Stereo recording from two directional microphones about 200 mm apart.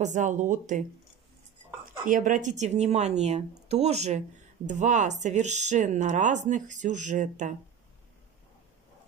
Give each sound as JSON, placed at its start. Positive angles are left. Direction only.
{"t": 0.0, "sound": "speech", "side_deg": -40}
{"t": 1.9, "sound": "speech", "side_deg": -40}